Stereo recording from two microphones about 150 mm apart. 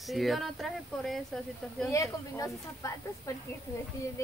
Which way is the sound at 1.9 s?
20° left (ahead or behind).